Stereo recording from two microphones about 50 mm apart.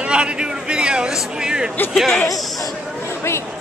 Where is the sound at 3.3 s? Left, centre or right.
Left.